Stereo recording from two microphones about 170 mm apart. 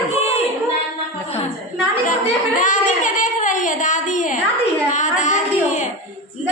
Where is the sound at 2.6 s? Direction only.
50° left (ahead or behind).